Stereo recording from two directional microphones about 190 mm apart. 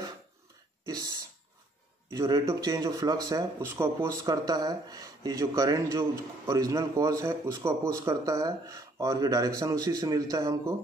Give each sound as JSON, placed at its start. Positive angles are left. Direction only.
{"t": 0.8, "sound": "speech", "side_deg": -20}